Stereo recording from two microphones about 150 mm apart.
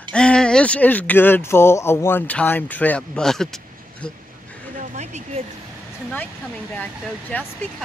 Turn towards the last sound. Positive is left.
turn(degrees=10)  # may be behind; listen again after turning